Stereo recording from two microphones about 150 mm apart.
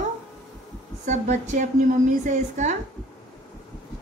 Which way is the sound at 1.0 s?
50° right (ahead or behind).